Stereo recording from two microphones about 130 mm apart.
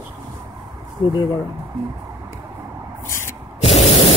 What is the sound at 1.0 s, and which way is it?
Speech, 40° left (ahead or behind).